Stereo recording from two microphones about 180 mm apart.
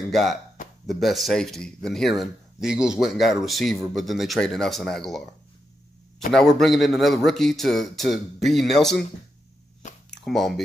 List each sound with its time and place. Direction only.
0.1 s speech: centre (ahead or behind)
6.3 s speech: centre (ahead or behind)
10.1 s speech: centre (ahead or behind)